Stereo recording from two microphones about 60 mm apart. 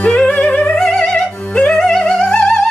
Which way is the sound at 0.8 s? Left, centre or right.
Centre.